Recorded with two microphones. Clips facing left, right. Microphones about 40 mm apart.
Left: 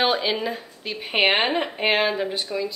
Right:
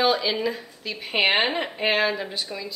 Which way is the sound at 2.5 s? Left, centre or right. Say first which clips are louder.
Left 7 dB; centre.